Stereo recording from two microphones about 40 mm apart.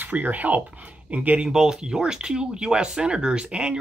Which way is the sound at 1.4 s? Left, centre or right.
Centre.